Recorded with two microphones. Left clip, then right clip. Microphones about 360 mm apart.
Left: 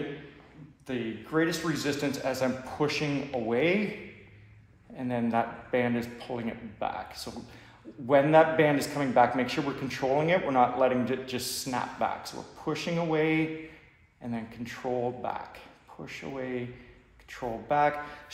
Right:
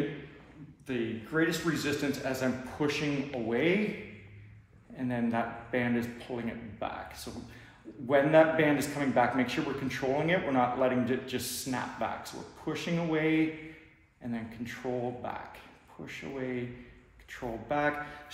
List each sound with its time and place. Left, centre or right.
0.8 s a man's voice: centre
4.9 s a man's voice: left